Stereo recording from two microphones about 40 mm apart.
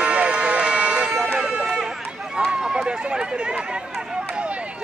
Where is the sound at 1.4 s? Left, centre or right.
Centre.